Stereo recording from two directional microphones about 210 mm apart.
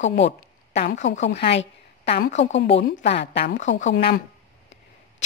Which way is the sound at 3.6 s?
60° left (ahead or behind).